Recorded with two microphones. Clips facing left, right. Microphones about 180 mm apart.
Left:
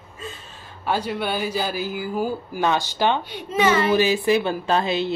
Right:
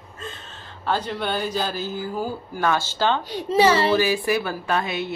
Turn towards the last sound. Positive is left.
turn(degrees=30)  # may be behind; listen again after turning